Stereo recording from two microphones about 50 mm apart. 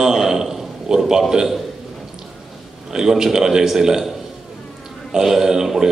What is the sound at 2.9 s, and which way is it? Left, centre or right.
A man's voice, centre.